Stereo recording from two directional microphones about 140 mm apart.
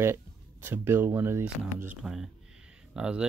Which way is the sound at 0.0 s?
15° right (ahead or behind).